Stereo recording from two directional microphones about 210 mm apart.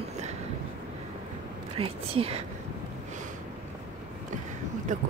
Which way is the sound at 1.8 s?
30° right (ahead or behind).